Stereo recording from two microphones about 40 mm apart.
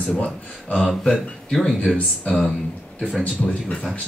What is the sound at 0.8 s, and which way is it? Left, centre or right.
Speech, centre.